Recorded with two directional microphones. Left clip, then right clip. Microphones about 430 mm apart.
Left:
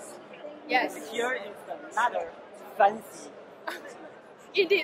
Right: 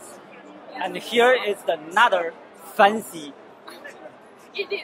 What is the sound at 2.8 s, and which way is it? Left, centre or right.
Speech, right.